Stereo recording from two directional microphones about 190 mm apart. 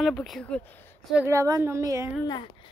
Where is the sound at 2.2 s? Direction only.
20° left (ahead or behind).